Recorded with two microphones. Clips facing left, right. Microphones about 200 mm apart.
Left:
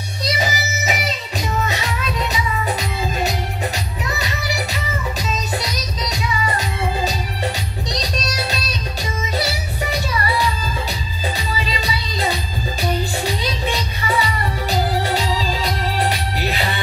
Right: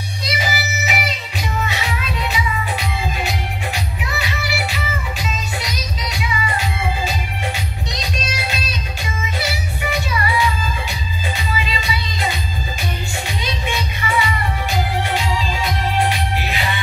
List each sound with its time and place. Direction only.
0.2 s music: 40° left (ahead or behind)
5.6 s music: 40° left (ahead or behind)
7.9 s music: 40° left (ahead or behind)
13.4 s music: 35° left (ahead or behind)